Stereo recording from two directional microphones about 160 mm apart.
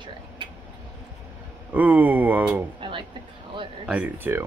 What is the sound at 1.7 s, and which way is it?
Speech, 10° right (ahead or behind).